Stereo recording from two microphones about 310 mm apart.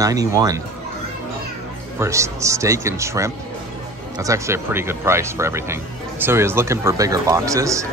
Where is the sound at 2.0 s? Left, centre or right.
Centre.